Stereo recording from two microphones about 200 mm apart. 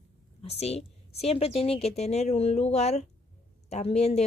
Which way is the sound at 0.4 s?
30° left (ahead or behind).